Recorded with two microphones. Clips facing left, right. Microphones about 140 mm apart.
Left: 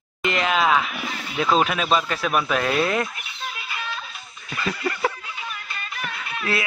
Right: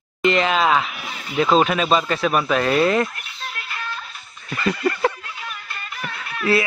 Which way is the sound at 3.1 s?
10° left (ahead or behind).